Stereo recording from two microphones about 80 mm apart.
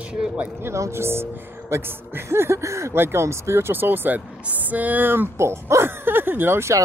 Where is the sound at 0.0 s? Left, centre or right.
Centre.